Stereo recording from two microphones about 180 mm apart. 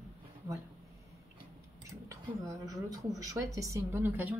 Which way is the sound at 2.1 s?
20° right (ahead or behind).